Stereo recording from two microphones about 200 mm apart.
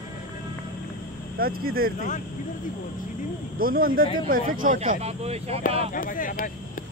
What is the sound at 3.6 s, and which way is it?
Speech, 45° right (ahead or behind).